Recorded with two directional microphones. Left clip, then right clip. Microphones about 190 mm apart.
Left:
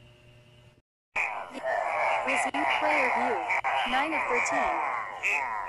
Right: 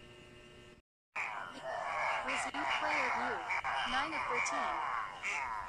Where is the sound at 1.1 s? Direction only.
40° left (ahead or behind).